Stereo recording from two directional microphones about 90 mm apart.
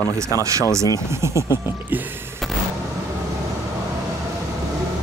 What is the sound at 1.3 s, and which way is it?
Speech, 40° left (ahead or behind).